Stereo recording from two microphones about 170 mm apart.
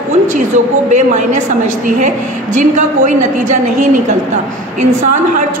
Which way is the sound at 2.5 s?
45° right (ahead or behind).